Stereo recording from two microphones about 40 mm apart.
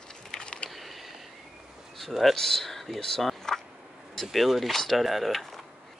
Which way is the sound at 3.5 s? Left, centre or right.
Centre.